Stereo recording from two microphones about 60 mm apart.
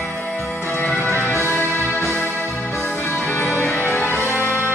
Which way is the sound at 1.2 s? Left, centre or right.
Left.